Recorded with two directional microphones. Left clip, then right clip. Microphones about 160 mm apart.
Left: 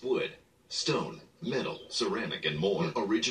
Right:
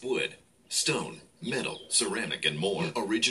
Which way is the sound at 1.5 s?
25° right (ahead or behind).